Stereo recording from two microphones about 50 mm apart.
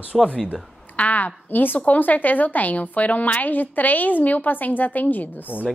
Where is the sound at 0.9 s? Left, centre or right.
Left.